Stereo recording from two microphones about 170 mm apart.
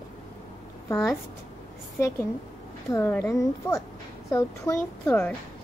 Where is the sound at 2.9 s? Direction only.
15° left (ahead or behind).